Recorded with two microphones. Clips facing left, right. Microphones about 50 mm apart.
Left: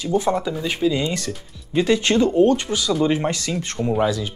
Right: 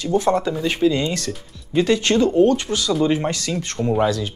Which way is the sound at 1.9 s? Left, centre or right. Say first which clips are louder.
Even; left.